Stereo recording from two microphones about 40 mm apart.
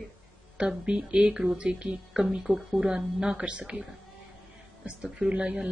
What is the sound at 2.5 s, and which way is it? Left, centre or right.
Speech, centre.